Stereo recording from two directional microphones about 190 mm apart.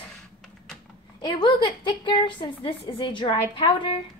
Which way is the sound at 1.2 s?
25° left (ahead or behind).